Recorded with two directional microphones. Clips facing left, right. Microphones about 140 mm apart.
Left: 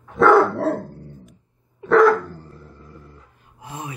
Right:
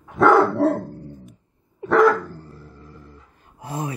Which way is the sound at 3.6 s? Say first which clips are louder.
Right 5 dB; 40° right (ahead or behind).